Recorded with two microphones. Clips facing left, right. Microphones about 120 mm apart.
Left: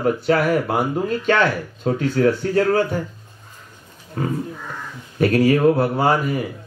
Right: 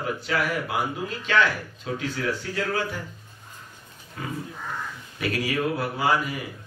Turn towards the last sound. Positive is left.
turn(degrees=45)  # may be behind; listen again after turning